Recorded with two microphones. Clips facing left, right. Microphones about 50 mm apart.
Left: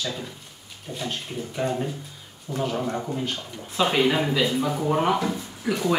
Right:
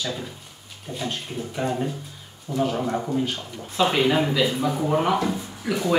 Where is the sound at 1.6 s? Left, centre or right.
Centre.